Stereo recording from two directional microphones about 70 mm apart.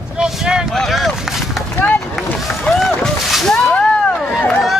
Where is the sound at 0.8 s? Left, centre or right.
Centre.